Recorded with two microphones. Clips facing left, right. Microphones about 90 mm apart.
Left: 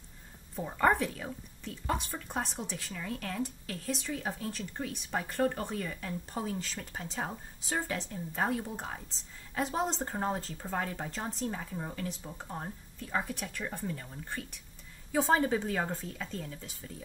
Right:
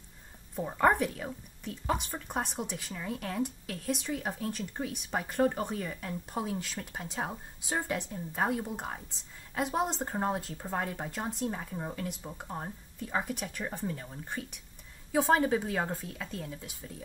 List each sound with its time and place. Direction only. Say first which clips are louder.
0.6 s a woman's voice: right 1 dB; 5° right (ahead or behind)